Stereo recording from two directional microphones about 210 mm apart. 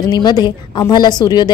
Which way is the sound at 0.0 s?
20° left (ahead or behind).